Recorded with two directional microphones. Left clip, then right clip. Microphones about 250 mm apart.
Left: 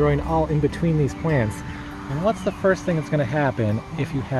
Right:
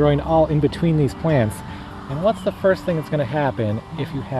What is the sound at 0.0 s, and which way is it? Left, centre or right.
Speech, right.